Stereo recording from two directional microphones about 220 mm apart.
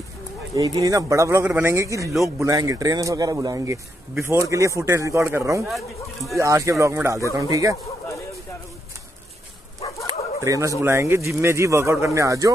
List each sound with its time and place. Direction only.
0.6 s speech: 15° right (ahead or behind)
5.7 s speech: centre (ahead or behind)
6.3 s speech: 15° right (ahead or behind)
10.0 s dog: 15° right (ahead or behind)
10.8 s speech: 10° right (ahead or behind)